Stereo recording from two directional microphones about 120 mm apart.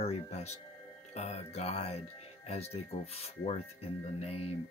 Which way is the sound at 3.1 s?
60° left (ahead or behind).